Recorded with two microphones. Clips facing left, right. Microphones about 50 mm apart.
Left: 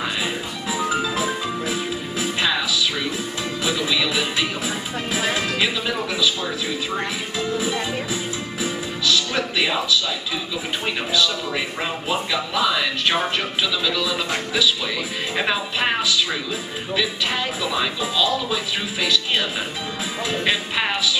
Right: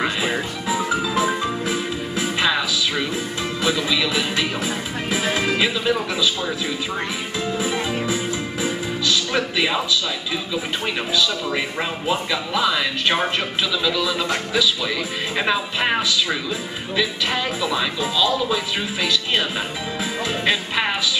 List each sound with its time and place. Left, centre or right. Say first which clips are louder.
0.8 s music: left 1 dB; centre
1.2 s music: right 2 dB; centre
3.6 s music: right 1 dB; centre
5.4 s music: right 2 dB; centre
7.3 s music: even; centre
12.1 s speech: right 1 dB; centre
14.1 s music: right 1 dB; centre
15.3 s speech: right 1 dB; centre
17.6 s speech: right 1 dB; centre
20.4 s speech: right 2 dB; centre